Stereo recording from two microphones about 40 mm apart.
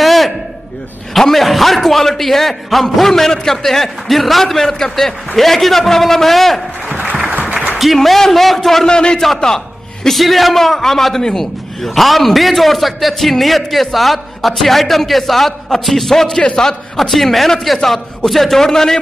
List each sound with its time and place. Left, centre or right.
0.0 s a sound: centre
1.1 s a man's voice: centre
7.1 s applause: right
7.7 s a man's voice: centre
8.8 s a man's voice: left
9.2 s a man's voice: centre
17.1 s a man's voice: centre